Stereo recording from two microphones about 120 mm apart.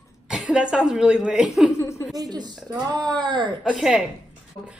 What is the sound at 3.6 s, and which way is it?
Speech, 5° right (ahead or behind).